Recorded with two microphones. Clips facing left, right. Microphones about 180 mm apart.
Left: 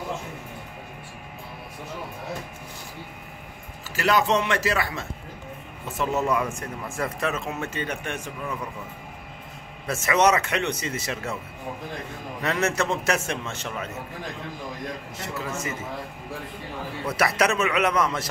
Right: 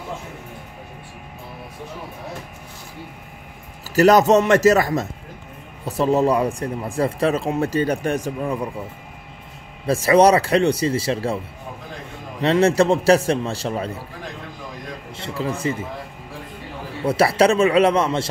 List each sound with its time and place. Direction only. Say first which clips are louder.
3.9 s speech: right 9 dB; 40° right (ahead or behind)
9.8 s speech: right 7 dB; 30° right (ahead or behind)
12.4 s speech: right 9 dB; 30° right (ahead or behind)
15.1 s speech: right 9 dB; 30° right (ahead or behind)
17.0 s a man's voice: right 7 dB; 30° right (ahead or behind)